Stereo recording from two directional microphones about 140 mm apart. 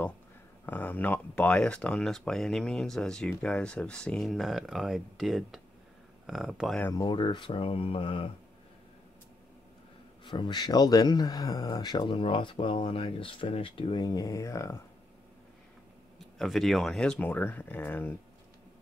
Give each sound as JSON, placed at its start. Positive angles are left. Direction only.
{"t": 0.7, "sound": "speech", "side_deg": 10}
{"t": 6.9, "sound": "speech", "side_deg": 30}
{"t": 10.2, "sound": "speech", "side_deg": 35}
{"t": 16.3, "sound": "speech", "side_deg": 0}